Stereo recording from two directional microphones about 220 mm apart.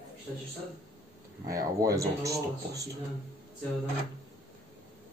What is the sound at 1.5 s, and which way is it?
Speech, 15° right (ahead or behind).